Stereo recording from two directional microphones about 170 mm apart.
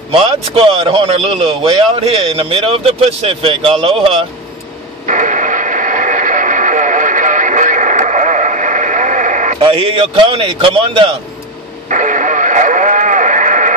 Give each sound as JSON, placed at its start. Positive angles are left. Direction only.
{"t": 0.1, "sound": "a man's voice", "side_deg": -30}
{"t": 5.0, "sound": "radio", "side_deg": -45}
{"t": 9.9, "sound": "a man's voice", "side_deg": -30}
{"t": 11.9, "sound": "radio", "side_deg": -45}